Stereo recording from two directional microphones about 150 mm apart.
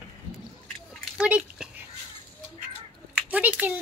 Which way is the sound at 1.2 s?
10° right (ahead or behind).